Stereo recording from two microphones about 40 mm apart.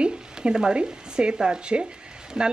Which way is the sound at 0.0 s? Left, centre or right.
Right.